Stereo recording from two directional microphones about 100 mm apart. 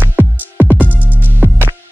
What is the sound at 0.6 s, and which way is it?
Music, 15° right (ahead or behind).